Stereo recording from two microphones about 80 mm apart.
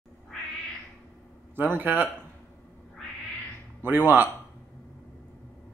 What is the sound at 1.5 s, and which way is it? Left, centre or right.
Speech, right.